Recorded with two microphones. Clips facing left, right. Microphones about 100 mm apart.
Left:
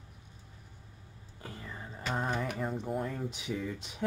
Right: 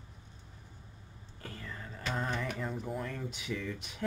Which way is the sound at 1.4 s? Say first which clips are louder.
Left 1 dB; 20° left (ahead or behind).